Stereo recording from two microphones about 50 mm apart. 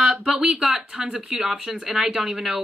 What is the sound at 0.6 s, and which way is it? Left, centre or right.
Speech, centre.